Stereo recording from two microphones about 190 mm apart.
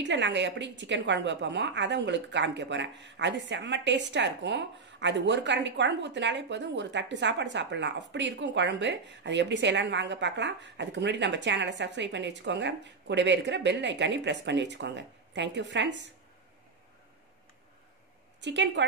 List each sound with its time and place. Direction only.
0.0 s a woman's voice: 70° right (ahead or behind)
18.4 s a woman's voice: 70° right (ahead or behind)